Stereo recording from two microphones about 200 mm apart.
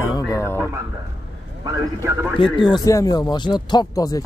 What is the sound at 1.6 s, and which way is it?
Speech, 15° right (ahead or behind).